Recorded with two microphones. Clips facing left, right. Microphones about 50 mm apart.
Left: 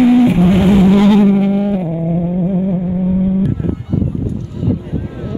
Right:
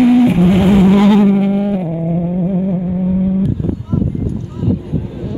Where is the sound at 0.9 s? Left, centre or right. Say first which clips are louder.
Even; right.